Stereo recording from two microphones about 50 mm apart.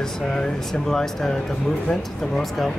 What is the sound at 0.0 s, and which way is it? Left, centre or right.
Speech, centre.